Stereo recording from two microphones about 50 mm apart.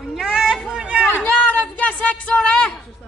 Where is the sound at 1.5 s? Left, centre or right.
Left.